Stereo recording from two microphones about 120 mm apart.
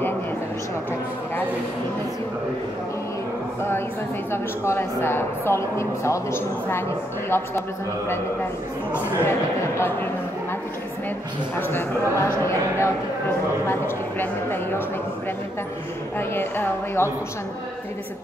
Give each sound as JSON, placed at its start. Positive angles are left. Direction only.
{"t": 4.3, "sound": "a woman's voice", "side_deg": 20}
{"t": 8.9, "sound": "a woman's voice", "side_deg": 20}
{"t": 12.2, "sound": "a woman's voice", "side_deg": 20}
{"t": 16.2, "sound": "a woman's voice", "side_deg": 20}